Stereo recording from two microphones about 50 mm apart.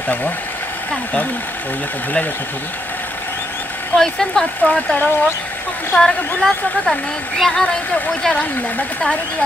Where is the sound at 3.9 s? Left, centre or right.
Centre.